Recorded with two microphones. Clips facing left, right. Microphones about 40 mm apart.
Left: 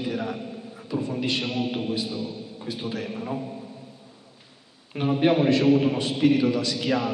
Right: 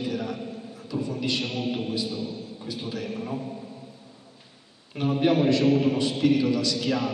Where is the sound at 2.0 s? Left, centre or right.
Centre.